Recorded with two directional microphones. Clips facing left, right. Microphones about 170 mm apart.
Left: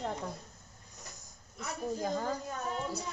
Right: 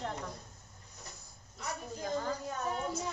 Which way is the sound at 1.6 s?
35° left (ahead or behind).